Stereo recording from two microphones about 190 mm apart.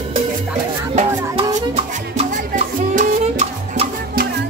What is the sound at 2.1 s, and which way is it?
Music, 40° right (ahead or behind).